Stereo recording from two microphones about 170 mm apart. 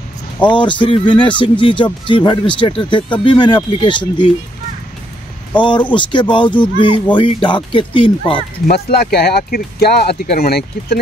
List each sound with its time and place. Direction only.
0.5 s speech: 30° left (ahead or behind)
5.6 s speech: 30° left (ahead or behind)
8.6 s speech: 65° left (ahead or behind)